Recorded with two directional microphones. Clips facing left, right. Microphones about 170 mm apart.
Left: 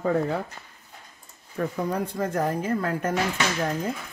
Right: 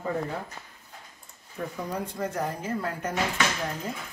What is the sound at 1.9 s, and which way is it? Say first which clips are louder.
Speech: left 4 dB; 55° left (ahead or behind).